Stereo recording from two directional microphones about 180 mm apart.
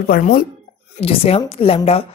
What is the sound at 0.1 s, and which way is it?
Speech, 55° left (ahead or behind).